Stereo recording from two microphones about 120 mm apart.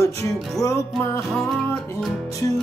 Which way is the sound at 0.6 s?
25° left (ahead or behind).